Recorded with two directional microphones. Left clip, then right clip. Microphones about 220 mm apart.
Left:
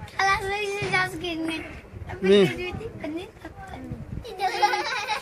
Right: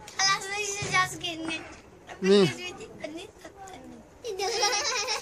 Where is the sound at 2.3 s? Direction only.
15° right (ahead or behind).